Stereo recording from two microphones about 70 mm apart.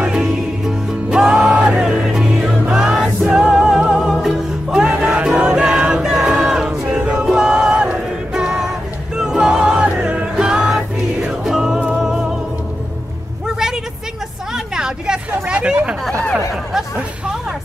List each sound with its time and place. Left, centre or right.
0.0 s music: centre
13.5 s a sound: centre
14.5 s hubbub: centre
16.7 s chatter: centre